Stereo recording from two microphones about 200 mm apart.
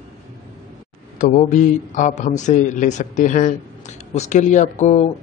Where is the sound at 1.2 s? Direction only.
40° left (ahead or behind).